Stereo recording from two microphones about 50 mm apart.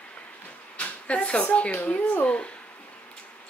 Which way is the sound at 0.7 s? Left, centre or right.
Left.